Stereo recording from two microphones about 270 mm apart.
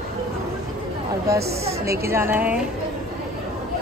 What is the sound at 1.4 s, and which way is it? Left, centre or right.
Speech, right.